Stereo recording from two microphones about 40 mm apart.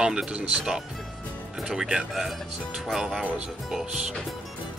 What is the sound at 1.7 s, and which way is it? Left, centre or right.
Speech, centre.